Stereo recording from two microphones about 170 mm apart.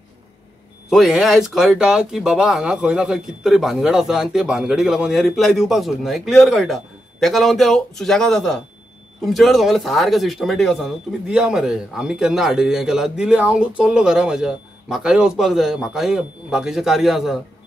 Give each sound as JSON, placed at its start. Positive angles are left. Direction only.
{"t": 0.8, "sound": "speech", "side_deg": 0}